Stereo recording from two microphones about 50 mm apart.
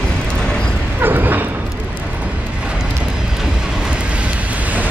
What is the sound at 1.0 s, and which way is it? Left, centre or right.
Bow-wow, right.